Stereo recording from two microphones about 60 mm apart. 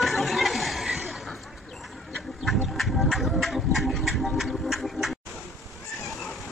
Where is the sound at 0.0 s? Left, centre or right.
Centre.